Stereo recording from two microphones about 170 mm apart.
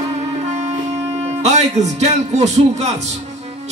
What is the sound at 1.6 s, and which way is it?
A man's voice, 40° right (ahead or behind).